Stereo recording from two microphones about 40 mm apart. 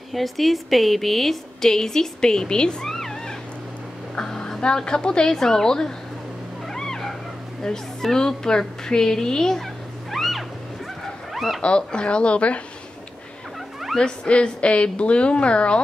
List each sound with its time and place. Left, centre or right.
0.1 s a woman's voice: centre; by 2.9 s left
2.9 s cat: centre
4.2 s a woman's voice: centre
6.7 s cat: centre
7.6 s a woman's voice: centre
10.1 s music: centre
11.3 s speech: centre
11.6 s a woman's voice: left
13.9 s a woman's voice: left